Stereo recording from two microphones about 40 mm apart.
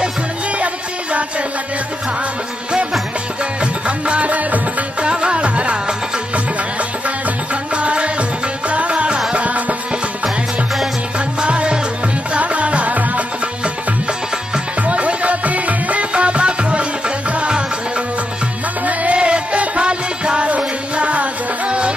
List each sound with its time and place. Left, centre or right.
3.8 s music: right
5.0 s music: right
7.7 s music: right
11.1 s music: right
14.8 s music: right